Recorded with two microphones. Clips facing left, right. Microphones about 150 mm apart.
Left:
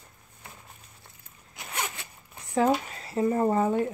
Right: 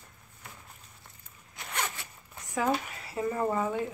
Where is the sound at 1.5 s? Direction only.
10° left (ahead or behind).